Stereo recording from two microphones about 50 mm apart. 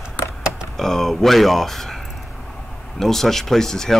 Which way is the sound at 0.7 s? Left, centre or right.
Centre.